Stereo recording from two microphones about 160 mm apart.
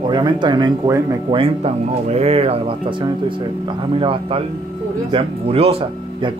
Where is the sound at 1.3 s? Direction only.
40° right (ahead or behind).